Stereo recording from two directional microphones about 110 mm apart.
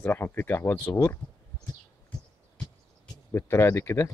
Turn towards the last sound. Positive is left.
turn(degrees=25)  # may be behind; listen again after turning